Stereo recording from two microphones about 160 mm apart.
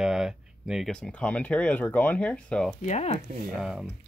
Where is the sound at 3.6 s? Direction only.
5° right (ahead or behind).